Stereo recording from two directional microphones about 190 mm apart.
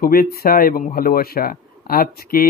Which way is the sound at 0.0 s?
50° left (ahead or behind).